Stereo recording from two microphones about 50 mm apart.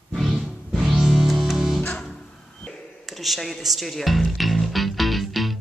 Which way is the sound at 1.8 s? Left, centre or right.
Centre.